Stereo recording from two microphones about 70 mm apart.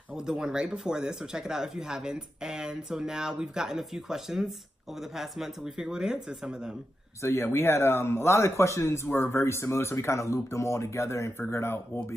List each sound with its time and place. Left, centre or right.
0.1 s speech: centre
7.2 s speech: left